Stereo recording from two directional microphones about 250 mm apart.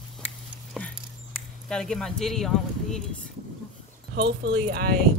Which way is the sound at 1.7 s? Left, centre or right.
Centre.